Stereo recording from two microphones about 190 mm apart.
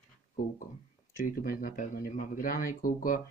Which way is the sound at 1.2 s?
45° left (ahead or behind).